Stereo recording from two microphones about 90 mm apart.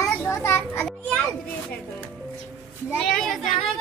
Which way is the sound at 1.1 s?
15° left (ahead or behind).